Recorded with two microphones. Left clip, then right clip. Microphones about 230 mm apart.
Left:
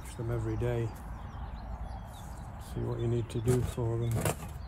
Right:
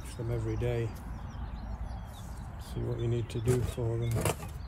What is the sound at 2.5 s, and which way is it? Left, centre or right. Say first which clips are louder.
Speech: even; centre.